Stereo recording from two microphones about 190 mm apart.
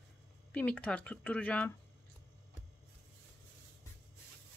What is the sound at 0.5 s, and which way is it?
Speech, 5° left (ahead or behind).